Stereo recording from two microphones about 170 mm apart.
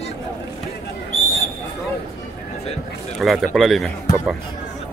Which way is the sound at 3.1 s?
Centre (ahead or behind).